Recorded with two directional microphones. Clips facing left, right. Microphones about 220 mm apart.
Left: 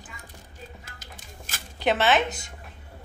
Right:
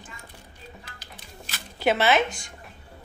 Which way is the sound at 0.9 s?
50° left (ahead or behind).